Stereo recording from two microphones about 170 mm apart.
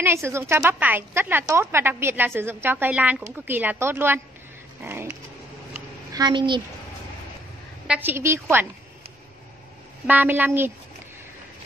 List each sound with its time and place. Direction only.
0.0 s a woman's voice: 15° right (ahead or behind)
5.7 s a sound: 25° right (ahead or behind)
7.8 s a woman's voice: 10° right (ahead or behind)
10.0 s a woman's voice: 10° right (ahead or behind)